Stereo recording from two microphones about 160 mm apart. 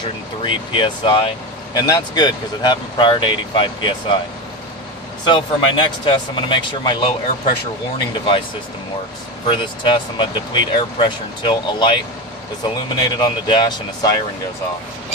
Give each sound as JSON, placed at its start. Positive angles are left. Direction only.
{"t": 0.4, "sound": "speech", "side_deg": 30}
{"t": 5.2, "sound": "speech", "side_deg": 30}
{"t": 9.5, "sound": "speech", "side_deg": 30}